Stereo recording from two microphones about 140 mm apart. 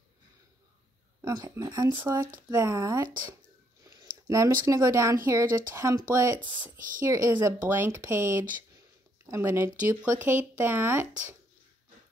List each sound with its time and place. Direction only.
1.2 s speech: 25° right (ahead or behind)
3.8 s a sound: 25° right (ahead or behind)
4.3 s speech: 20° right (ahead or behind)